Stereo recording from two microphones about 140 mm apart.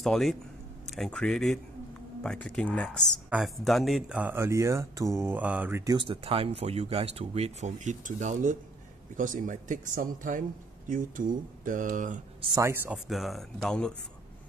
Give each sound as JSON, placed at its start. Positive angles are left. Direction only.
{"t": 0.0, "sound": "speech", "side_deg": 0}
{"t": 4.2, "sound": "mantra", "side_deg": -15}
{"t": 5.9, "sound": "speech", "side_deg": -40}
{"t": 12.5, "sound": "mantra", "side_deg": -15}
{"t": 12.9, "sound": "speech", "side_deg": 0}